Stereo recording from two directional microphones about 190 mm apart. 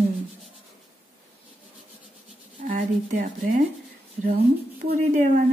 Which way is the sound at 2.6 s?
45° right (ahead or behind).